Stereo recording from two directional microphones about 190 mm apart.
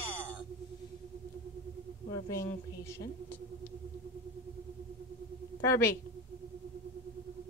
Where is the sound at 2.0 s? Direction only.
20° left (ahead or behind).